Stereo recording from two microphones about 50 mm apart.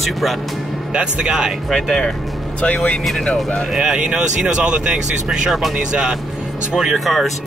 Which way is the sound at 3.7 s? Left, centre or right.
Centre.